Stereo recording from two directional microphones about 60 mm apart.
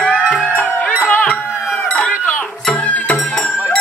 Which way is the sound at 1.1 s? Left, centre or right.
Left.